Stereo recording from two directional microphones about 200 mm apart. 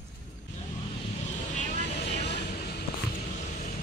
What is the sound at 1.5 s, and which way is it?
Vehicle, 35° left (ahead or behind).